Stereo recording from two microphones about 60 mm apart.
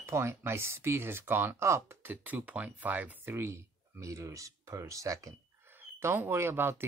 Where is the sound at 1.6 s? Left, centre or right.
Right.